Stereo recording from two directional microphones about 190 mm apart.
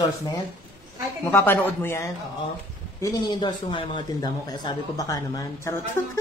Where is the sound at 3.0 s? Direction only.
25° left (ahead or behind).